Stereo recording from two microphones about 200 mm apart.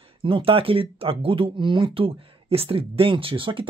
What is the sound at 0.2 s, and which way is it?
Speech, 25° right (ahead or behind).